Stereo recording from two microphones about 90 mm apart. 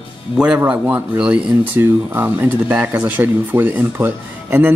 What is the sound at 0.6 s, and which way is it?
Speech, 15° right (ahead or behind).